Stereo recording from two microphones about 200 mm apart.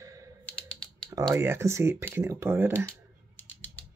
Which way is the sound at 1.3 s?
15° right (ahead or behind).